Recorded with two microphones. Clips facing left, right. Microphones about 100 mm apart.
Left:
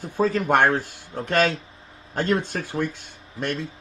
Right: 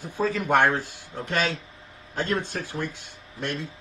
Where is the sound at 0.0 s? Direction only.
55° left (ahead or behind).